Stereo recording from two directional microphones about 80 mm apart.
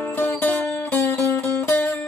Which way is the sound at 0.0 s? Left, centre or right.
Left.